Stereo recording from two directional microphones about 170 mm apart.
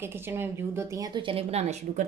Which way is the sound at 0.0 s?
15° right (ahead or behind).